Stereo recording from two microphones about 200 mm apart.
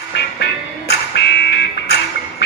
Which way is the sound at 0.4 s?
55° left (ahead or behind).